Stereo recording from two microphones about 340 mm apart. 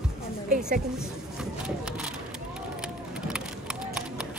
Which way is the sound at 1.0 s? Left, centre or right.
Centre.